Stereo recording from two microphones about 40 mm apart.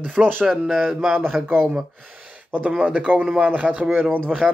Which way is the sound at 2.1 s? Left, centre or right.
Right.